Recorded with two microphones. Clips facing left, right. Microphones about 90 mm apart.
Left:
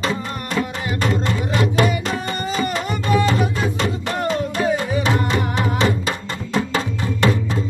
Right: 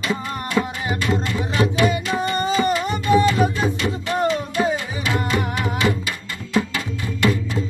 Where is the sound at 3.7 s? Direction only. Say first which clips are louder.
Even; 35° left (ahead or behind).